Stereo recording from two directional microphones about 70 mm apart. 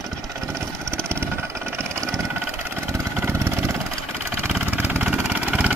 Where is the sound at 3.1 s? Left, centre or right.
Right.